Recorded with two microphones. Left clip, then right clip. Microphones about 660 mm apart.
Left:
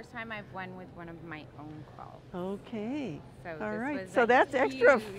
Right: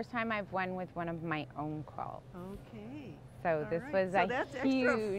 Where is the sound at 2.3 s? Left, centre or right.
Left.